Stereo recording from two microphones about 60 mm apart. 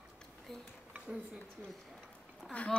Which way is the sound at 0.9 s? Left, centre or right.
Centre.